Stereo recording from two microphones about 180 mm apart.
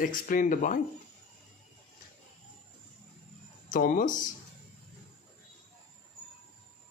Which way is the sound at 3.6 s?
45° left (ahead or behind).